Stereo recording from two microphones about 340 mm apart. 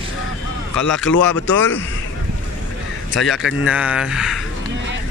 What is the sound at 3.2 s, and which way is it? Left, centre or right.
A man's voice, centre.